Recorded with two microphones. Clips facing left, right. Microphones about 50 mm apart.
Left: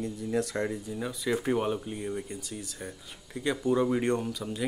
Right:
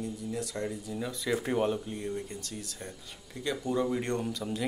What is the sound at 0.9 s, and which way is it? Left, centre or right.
Speech, centre.